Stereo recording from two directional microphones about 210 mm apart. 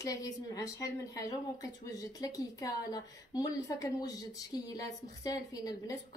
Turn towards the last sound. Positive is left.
turn(degrees=15)  # may be behind; listen again after turning